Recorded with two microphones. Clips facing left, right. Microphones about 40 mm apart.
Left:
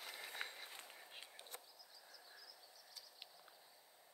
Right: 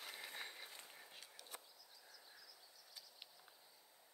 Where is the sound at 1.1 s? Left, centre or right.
Left.